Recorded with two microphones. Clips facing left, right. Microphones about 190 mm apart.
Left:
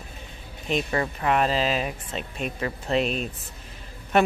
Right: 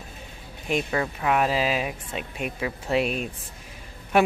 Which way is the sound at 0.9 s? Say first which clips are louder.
Left 1 dB; centre (ahead or behind).